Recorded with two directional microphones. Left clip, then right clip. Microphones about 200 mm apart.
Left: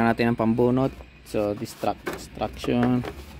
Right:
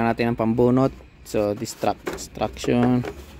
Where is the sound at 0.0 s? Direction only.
5° right (ahead or behind).